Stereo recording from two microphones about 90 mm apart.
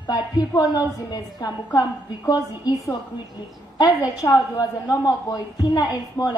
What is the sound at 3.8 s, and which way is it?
A woman's voice, 35° left (ahead or behind).